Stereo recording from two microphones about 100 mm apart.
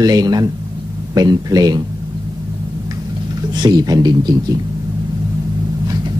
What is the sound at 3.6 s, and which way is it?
Speech, 40° right (ahead or behind).